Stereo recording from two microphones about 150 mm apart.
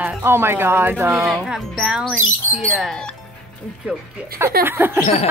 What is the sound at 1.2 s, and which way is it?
Speech, 5° right (ahead or behind).